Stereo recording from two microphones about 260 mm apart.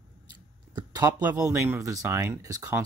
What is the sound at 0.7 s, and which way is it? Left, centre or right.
Speech, centre.